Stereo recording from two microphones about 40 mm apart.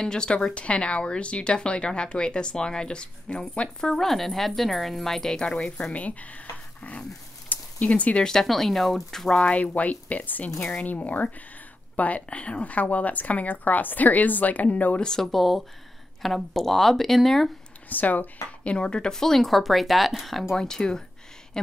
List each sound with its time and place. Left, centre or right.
0.0 s speech: centre
3.9 s speech: centre
5.9 s a woman's voice: left
6.8 s dog: left
8.2 s speech: centre
9.4 s a woman's voice: left
15.0 s speech: centre
17.8 s speech: left
18.6 s speech: left
19.1 s speech: centre
20.5 s speech: centre